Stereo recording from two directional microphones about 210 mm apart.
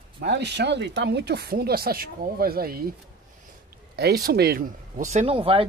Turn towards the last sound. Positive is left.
turn(degrees=-25)  # may be behind; listen again after turning